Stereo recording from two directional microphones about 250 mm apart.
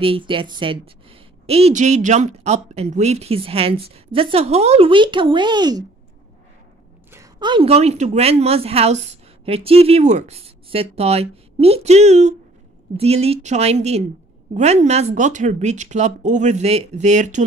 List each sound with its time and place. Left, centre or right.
0.0 s a woman's voice: right
7.1 s a woman's voice: centre